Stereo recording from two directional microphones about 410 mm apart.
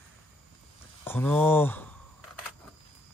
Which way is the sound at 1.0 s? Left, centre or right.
Centre.